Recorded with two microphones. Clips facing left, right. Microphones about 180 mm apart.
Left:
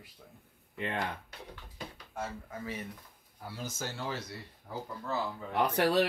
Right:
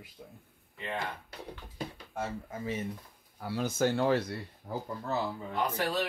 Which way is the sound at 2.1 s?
20° right (ahead or behind).